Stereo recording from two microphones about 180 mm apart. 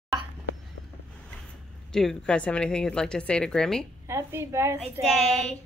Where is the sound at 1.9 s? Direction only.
5° left (ahead or behind).